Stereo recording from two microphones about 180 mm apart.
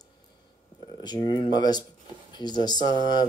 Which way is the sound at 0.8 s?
25° left (ahead or behind).